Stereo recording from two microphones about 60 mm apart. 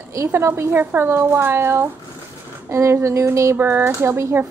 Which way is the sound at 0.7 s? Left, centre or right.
Right.